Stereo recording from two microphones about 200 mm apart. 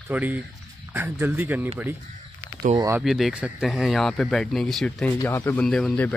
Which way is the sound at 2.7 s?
15° right (ahead or behind).